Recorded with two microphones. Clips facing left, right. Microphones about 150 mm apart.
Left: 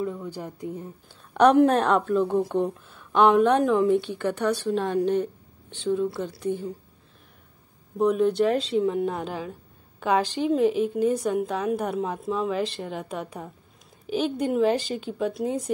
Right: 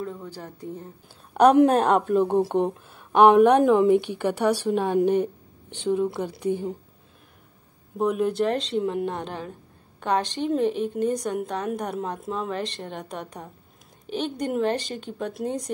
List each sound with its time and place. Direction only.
0.0 s speech: 10° left (ahead or behind)
2.0 s a woman's voice: 15° right (ahead or behind)
8.0 s a woman's voice: centre (ahead or behind)